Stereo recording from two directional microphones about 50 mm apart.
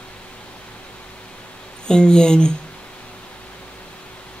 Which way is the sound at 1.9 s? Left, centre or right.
Centre.